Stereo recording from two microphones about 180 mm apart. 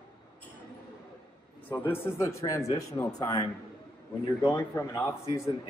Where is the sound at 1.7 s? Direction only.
10° left (ahead or behind).